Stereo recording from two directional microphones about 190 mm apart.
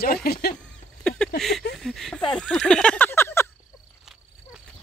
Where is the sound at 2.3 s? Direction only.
5° left (ahead or behind).